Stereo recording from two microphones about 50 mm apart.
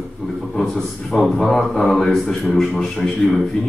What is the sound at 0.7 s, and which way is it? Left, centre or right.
A man's voice, centre.